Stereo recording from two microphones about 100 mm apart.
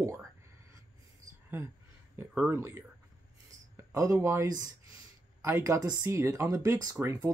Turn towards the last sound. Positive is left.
turn(degrees=-25)  # may be behind; listen again after turning